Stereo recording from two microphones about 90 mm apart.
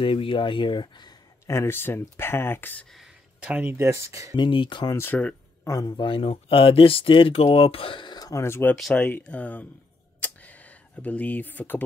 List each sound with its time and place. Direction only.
0.0 s speech: 90° left; by 1.1 s 55° left (ahead or behind)
1.5 s speech: 30° left (ahead or behind)
3.3 s speech: 20° right (ahead or behind)
3.8 s speech: 35° right (ahead or behind)
4.4 s speech: 60° left (ahead or behind)
4.9 s speech: 25° left (ahead or behind)
5.7 s a man's voice: 45° left (ahead or behind)
5.9 s speech: 80° left
8.2 s a sound: 40° left (ahead or behind)
8.5 s speech: 30° left (ahead or behind)
8.7 s speech: centre (ahead or behind)
9.2 s speech: 15° left (ahead or behind)
10.2 s a sound: 15° left (ahead or behind)